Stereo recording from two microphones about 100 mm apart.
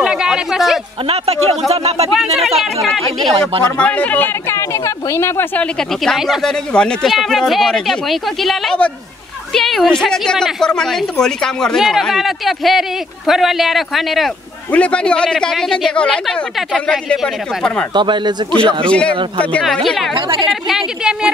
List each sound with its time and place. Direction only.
0.0 s a sound: 5° right (ahead or behind)
1.0 s speech: 90° right
2.1 s a woman's voice: centre (ahead or behind)
3.6 s speech: 10° left (ahead or behind)
5.8 s a woman's voice: 5° left (ahead or behind)
14.7 s a woman's voice: 15° left (ahead or behind)
17.9 s speech: 50° right (ahead or behind)
18.9 s a woman's voice: 10° left (ahead or behind)
20.2 s speech: 60° right (ahead or behind)
20.6 s speech: 5° right (ahead or behind)